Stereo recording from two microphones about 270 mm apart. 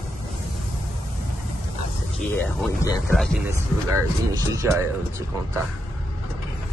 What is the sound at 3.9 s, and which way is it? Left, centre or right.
Speech, centre.